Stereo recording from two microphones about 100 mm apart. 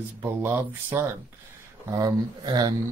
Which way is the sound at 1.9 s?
40° right (ahead or behind).